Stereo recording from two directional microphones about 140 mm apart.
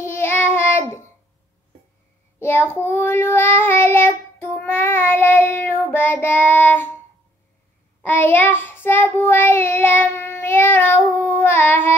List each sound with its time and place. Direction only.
0.0 s child singing: 15° left (ahead or behind)
2.3 s child singing: 15° left (ahead or behind)
8.0 s child singing: 15° left (ahead or behind)